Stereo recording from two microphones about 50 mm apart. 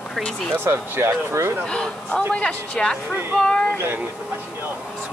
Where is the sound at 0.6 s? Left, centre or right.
Right.